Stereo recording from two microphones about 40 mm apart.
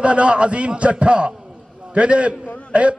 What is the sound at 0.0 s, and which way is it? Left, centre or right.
A man's voice, right.